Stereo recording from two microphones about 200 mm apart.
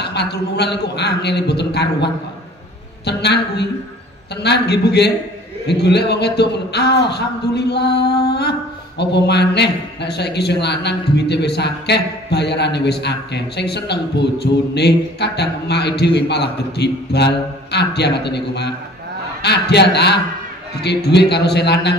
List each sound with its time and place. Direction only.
0.0 s speech: 55° left (ahead or behind)